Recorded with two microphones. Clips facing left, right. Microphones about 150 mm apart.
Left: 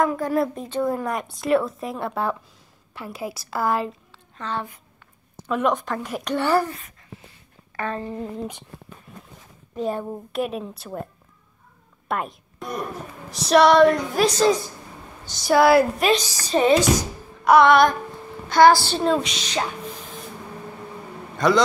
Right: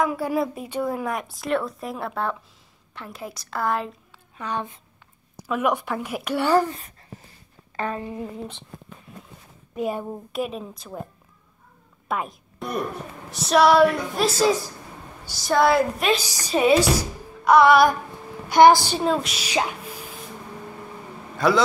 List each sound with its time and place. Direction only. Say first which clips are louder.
0.0 s a woman's voice: left 2 dB; 10° right (ahead or behind)
4.4 s a woman's voice: even; 15° right (ahead or behind)
7.9 s a woman's voice: left 1 dB; 10° right (ahead or behind)
9.8 s a woman's voice: left 1 dB; 10° right (ahead or behind)
10.4 s a woman's voice: left 2 dB; centre (ahead or behind)
12.1 s a woman's voice: left 1 dB; centre (ahead or behind)
16.2 s a woman's voice: left 1 dB; 10° right (ahead or behind)
18.5 s a woman's voice: right 1 dB; 15° right (ahead or behind)
21.4 s a woman's voice: left 1 dB; 5° right (ahead or behind)